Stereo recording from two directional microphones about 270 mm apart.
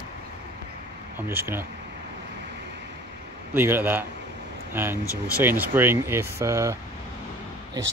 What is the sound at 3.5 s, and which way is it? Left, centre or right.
Speech, centre.